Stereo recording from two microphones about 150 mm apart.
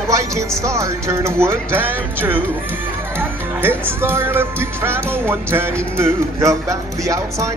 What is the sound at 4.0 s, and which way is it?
Speech, 15° right (ahead or behind).